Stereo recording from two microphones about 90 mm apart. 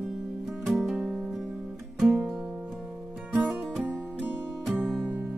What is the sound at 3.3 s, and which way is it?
Music, 10° right (ahead or behind).